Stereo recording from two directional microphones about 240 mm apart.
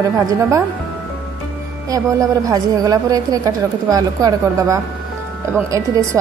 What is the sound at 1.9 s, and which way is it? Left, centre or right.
A woman's voice, centre.